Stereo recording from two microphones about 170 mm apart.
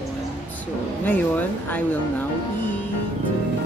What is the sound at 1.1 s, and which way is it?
Speech, 10° left (ahead or behind).